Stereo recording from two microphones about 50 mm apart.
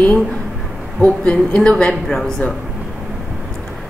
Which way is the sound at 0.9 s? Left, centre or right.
Left.